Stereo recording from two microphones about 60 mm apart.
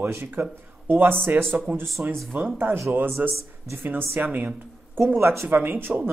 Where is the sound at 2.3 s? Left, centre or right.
Right.